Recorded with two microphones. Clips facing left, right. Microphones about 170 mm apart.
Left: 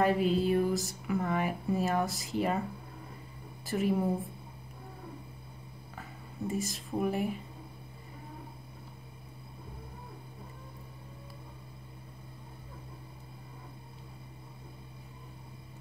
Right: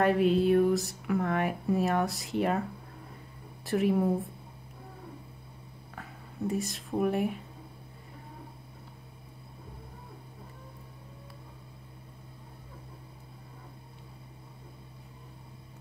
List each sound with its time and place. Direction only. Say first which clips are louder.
0.0 s speech: right 3 dB; centre (ahead or behind)
3.6 s speech: right 3 dB; centre (ahead or behind)
5.9 s speech: right 2 dB; centre (ahead or behind)